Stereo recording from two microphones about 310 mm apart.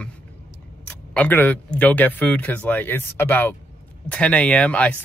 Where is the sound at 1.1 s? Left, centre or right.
Centre.